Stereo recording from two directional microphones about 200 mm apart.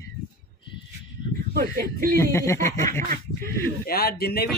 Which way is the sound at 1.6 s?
50° right (ahead or behind).